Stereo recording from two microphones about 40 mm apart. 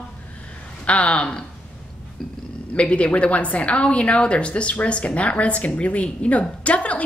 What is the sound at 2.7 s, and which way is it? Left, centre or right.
A woman's voice, left.